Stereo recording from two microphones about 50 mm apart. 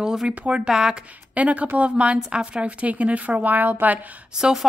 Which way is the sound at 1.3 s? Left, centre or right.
Right.